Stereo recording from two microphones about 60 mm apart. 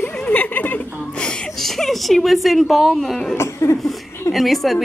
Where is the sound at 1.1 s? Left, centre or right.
Centre.